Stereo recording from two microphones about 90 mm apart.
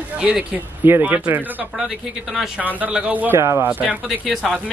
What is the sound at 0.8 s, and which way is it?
Speech, 20° right (ahead or behind).